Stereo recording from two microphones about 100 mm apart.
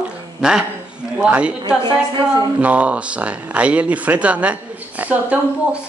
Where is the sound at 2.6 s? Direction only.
15° right (ahead or behind).